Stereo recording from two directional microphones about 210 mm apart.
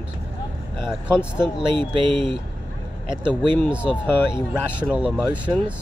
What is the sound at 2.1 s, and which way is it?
Speech, 25° right (ahead or behind).